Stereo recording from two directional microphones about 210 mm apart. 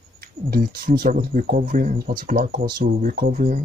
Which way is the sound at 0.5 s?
45° right (ahead or behind).